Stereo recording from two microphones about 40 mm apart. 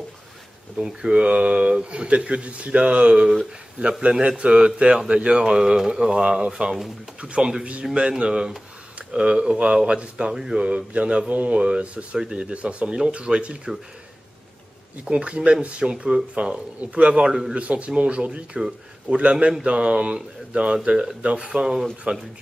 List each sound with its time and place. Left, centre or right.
0.7 s speech: centre
7.8 s speech: centre
8.2 s speech: centre
10.3 s a man's voice: centre
10.6 s speech: right
15.0 s speech: right
16.3 s speech: right
17.1 s a man's voice: centre
17.6 s speech: right; by 21.7 s centre
22.1 s speech: right